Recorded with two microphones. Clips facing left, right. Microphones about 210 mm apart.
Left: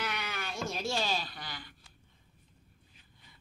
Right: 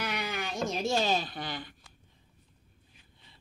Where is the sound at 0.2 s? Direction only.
15° right (ahead or behind).